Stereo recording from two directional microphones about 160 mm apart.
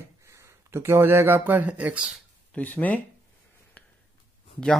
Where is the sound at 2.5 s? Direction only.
10° left (ahead or behind).